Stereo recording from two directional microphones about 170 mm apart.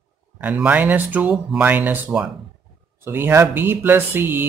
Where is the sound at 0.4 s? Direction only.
5° right (ahead or behind).